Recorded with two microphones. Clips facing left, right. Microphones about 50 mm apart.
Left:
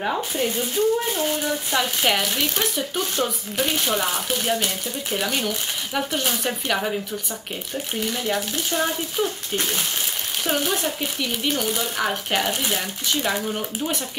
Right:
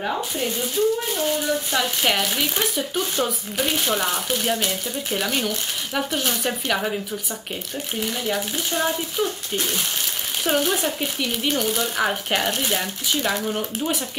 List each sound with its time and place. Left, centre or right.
0.4 s speech: left
1.5 s speech: centre
10.4 s speech: centre